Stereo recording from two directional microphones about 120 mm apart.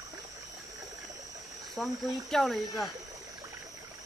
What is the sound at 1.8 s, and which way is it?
Speech, centre (ahead or behind).